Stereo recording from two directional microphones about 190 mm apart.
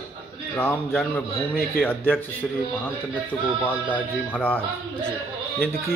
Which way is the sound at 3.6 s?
10° left (ahead or behind).